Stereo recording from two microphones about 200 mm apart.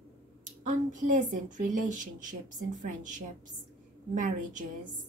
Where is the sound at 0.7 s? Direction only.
40° right (ahead or behind).